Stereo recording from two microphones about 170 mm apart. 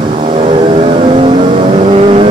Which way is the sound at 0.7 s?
35° right (ahead or behind).